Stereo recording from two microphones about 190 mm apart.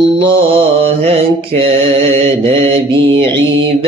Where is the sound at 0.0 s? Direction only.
30° right (ahead or behind).